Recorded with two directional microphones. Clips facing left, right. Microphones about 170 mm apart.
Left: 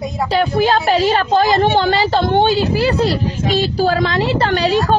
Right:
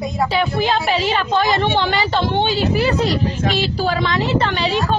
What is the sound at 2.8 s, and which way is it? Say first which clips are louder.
Speech: left 2 dB; 35° left (ahead or behind).